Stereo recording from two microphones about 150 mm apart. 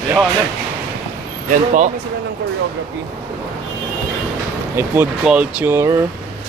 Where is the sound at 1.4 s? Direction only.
55° right (ahead or behind).